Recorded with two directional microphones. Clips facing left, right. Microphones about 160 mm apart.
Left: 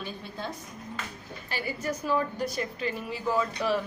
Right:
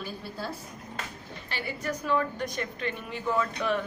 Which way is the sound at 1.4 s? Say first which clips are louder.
Left 1 dB; 40° left (ahead or behind).